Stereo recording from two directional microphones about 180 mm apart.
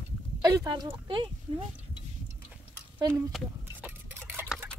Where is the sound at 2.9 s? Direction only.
25° right (ahead or behind).